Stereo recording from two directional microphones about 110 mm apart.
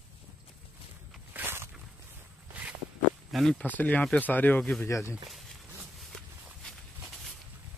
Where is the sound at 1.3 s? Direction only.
20° right (ahead or behind).